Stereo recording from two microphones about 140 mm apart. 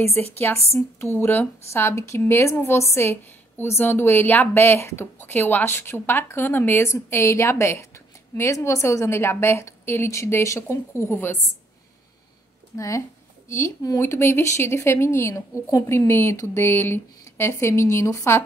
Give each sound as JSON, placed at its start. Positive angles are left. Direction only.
{"t": 0.0, "sound": "speech", "side_deg": 15}
{"t": 12.7, "sound": "speech", "side_deg": 20}